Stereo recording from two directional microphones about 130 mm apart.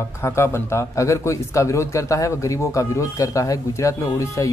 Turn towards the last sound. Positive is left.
turn(degrees=25)  # may be behind; listen again after turning